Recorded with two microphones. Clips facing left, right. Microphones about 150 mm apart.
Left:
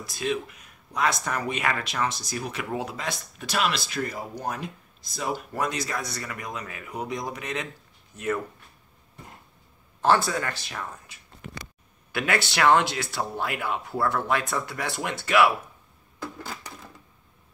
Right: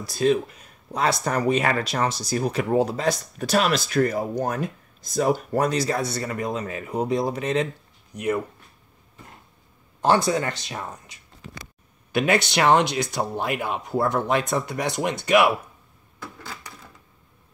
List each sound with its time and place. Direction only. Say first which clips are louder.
0.0 s speech: right 8 dB; 35° right (ahead or behind)
8.1 s speech: right 4 dB; 15° right (ahead or behind)
10.0 s speech: right 2 dB; 20° right (ahead or behind)